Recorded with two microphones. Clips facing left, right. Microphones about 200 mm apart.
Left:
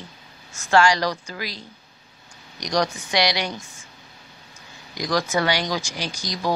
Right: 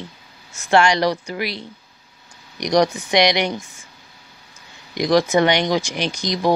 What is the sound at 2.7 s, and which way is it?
Speech, 15° right (ahead or behind).